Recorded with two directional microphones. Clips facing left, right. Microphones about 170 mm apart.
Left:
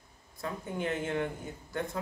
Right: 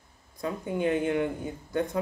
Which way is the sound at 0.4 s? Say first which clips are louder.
Right 6 dB; 15° right (ahead or behind).